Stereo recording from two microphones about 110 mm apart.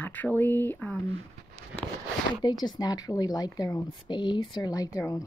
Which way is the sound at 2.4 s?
40° left (ahead or behind).